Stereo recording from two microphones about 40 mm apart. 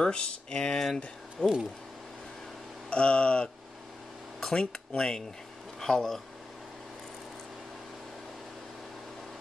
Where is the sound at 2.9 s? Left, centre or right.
Left.